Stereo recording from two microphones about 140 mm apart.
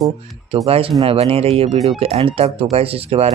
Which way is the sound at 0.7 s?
40° right (ahead or behind).